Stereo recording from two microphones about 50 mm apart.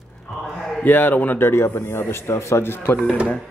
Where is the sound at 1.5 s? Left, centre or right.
Left.